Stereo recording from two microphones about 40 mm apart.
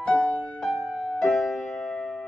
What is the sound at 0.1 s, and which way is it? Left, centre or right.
Music, left.